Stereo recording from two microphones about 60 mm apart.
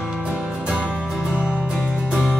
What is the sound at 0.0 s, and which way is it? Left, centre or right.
Music, centre.